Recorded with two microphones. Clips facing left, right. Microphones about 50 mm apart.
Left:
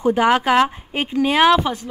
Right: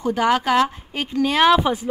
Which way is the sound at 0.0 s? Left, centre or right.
Left.